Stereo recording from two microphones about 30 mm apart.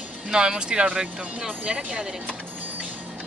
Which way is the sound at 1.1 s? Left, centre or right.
Right.